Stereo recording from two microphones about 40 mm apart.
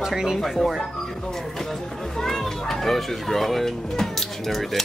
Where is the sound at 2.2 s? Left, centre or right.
Centre.